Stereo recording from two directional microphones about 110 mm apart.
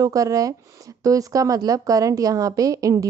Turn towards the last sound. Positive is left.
turn(degrees=-30)  # may be behind; listen again after turning